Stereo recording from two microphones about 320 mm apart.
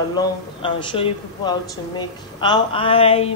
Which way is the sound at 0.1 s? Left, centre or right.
Centre.